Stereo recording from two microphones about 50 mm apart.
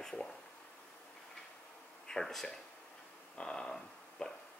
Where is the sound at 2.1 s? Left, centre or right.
Centre.